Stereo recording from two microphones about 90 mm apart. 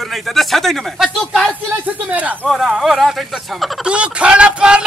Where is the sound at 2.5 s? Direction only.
5° right (ahead or behind).